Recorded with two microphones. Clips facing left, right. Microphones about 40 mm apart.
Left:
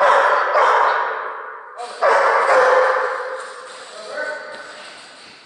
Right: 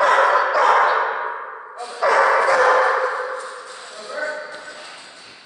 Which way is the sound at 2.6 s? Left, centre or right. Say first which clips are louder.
Left 1 dB; centre.